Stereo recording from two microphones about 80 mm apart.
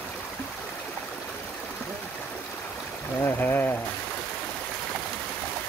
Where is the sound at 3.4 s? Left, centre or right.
Left.